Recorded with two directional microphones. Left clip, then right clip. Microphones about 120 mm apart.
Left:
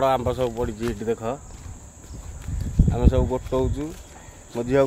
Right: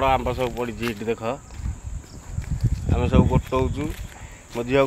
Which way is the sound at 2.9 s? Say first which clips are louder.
Right 2 dB; 20° left (ahead or behind).